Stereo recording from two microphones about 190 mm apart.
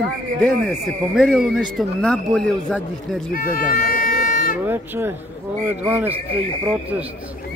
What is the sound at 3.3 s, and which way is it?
Music, 50° left (ahead or behind).